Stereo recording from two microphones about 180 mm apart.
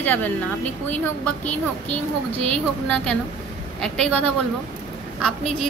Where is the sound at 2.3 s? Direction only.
35° right (ahead or behind).